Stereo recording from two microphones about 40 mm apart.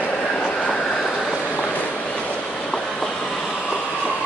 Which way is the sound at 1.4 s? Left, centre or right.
Left.